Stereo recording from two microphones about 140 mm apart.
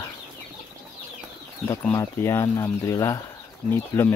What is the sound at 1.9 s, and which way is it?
Speech, 20° left (ahead or behind).